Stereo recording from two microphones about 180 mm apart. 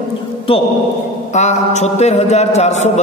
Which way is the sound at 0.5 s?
30° left (ahead or behind).